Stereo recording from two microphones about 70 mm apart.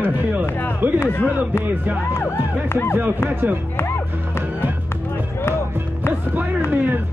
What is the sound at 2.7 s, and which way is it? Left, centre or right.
Speech, left.